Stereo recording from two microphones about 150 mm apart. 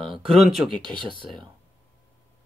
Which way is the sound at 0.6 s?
30° right (ahead or behind).